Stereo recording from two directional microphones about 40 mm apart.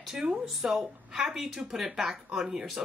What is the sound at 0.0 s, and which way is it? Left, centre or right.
Speech, centre.